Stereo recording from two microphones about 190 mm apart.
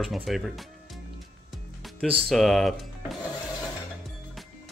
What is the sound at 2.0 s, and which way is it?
Speech, 5° left (ahead or behind).